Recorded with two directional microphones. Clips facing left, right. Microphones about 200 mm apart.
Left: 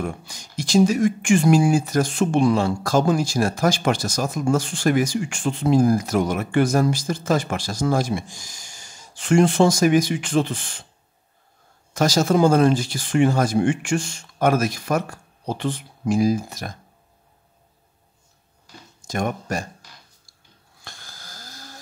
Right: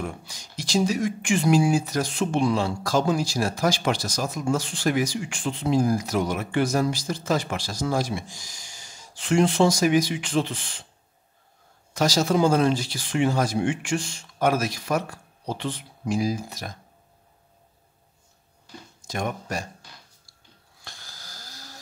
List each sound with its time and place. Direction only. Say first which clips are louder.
0.0 s speech: left 4 dB; 50° left (ahead or behind)
11.9 s speech: left 3 dB; 50° left (ahead or behind)
19.0 s speech: left 4 dB; 50° left (ahead or behind)
20.8 s snoring: left 2 dB; 50° left (ahead or behind)